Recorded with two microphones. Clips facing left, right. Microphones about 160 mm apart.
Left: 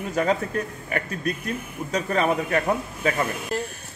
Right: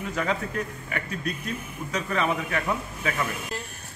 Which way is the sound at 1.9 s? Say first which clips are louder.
Left 4 dB; 45° left (ahead or behind).